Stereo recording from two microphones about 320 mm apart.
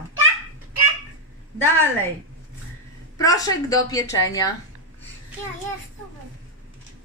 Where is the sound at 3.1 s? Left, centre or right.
Centre.